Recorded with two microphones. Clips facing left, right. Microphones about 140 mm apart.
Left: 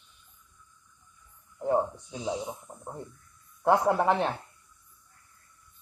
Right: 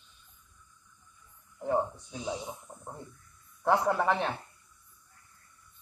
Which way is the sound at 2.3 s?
20° left (ahead or behind).